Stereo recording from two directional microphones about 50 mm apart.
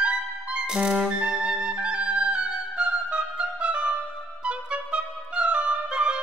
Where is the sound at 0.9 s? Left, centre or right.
Right.